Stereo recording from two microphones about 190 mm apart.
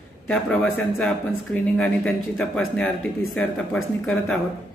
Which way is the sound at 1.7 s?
5° left (ahead or behind).